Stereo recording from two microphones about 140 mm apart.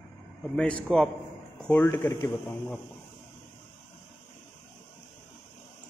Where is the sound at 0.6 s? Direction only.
10° left (ahead or behind).